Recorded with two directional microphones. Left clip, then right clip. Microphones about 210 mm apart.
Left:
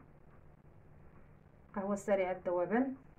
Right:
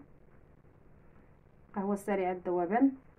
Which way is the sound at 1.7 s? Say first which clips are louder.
Even; 35° right (ahead or behind).